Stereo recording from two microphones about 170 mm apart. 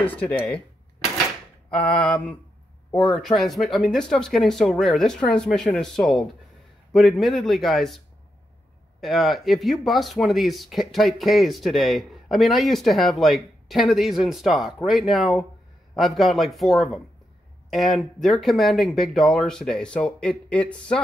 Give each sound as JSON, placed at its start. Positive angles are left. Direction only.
{"t": 0.0, "sound": "mantra", "side_deg": 10}
{"t": 1.7, "sound": "mantra", "side_deg": 10}
{"t": 3.1, "sound": "speech", "side_deg": 0}
{"t": 9.0, "sound": "speech", "side_deg": 0}